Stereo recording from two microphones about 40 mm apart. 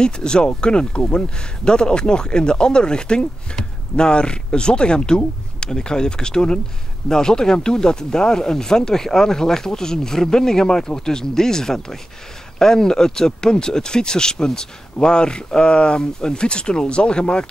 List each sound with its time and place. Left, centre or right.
0.0 s speech: left